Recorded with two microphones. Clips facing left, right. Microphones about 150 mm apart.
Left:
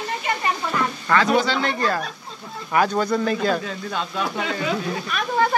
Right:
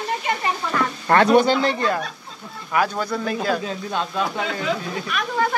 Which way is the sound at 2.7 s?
5° right (ahead or behind).